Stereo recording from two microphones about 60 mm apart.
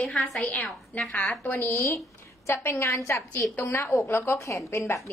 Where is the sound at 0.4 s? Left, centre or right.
Left.